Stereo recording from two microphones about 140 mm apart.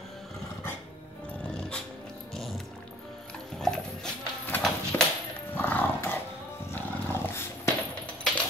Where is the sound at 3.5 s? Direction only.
5° left (ahead or behind).